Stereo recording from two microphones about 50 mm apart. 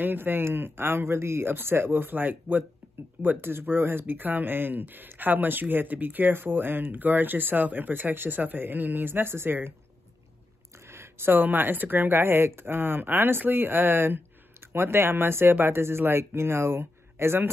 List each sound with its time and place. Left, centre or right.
0.0 s speech: right
3.3 s speech: right
10.9 s speech: right